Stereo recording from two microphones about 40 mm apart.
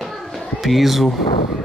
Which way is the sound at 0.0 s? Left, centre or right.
Centre.